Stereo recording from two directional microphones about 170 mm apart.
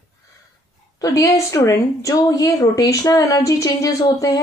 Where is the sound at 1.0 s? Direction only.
20° left (ahead or behind).